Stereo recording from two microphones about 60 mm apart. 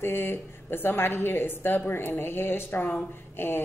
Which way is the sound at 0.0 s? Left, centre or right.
Left.